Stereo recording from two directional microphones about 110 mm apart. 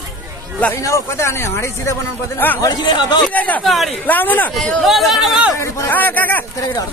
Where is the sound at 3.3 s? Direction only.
15° left (ahead or behind).